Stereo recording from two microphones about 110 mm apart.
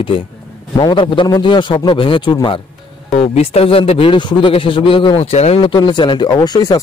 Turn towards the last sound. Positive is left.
turn(degrees=35)  # may be behind; listen again after turning